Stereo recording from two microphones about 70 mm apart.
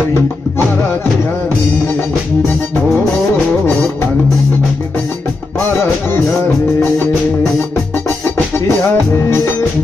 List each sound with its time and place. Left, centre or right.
8.5 s music: left